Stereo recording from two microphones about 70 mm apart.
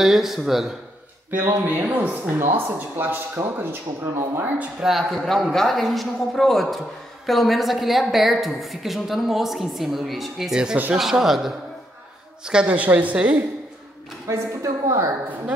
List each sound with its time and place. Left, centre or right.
0.0 s a woman's voice: centre
1.3 s speech: right
4.8 s a woman's voice: centre
12.4 s speech: centre
14.2 s a woman's voice: right